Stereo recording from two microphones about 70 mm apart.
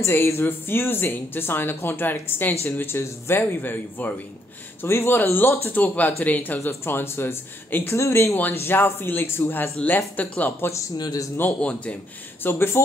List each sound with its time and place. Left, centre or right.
0.0 s speech: left
11.0 s speech: left
11.6 s speech: centre
12.4 s speech: left